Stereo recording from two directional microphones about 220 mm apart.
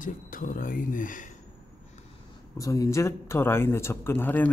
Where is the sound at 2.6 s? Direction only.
15° left (ahead or behind).